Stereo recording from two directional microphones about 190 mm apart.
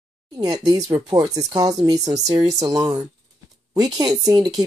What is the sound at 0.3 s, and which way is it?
Speech, 20° right (ahead or behind).